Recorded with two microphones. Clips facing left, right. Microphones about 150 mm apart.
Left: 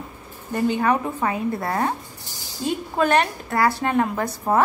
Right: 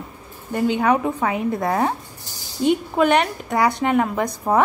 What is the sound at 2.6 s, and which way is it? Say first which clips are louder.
A woman's voice: right 5 dB; 20° right (ahead or behind).